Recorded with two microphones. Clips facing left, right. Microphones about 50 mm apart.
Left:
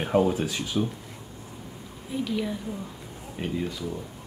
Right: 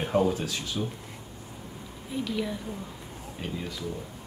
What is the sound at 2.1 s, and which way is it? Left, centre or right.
Speech, centre.